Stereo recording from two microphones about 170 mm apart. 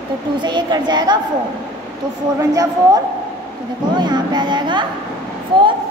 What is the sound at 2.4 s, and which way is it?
A woman's voice, 20° right (ahead or behind).